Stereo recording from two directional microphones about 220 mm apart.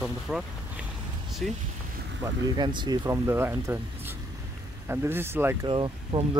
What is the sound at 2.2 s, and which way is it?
Speech, 20° right (ahead or behind).